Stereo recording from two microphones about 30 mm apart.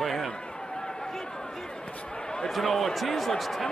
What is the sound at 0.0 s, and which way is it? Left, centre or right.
Run, centre.